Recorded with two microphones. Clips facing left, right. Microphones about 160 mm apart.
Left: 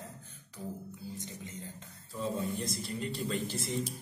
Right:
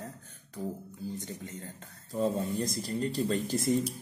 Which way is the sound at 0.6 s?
40° right (ahead or behind).